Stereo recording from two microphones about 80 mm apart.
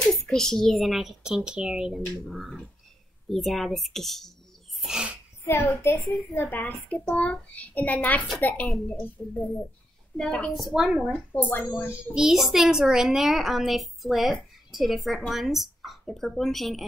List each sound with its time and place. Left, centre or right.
0.1 s a woman's voice: centre
4.7 s speech: centre
5.5 s a child's voice: left; by 10.5 s centre
10.5 s a woman's voice: centre
11.4 s a child's voice: left
11.9 s a woman's voice: centre